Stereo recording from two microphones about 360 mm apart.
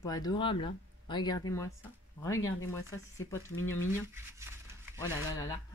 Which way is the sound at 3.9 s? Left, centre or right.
Centre.